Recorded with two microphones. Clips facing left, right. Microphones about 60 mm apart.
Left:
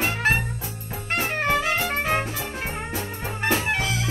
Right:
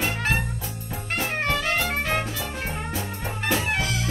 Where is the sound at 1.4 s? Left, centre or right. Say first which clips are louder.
Left 2 dB; centre.